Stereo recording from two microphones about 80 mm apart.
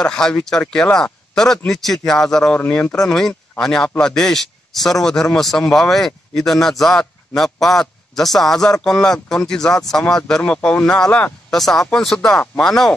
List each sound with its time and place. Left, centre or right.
0.0 s a man's voice: centre
2.7 s speech: centre
3.0 s a man's voice: centre
11.5 s a man's voice: centre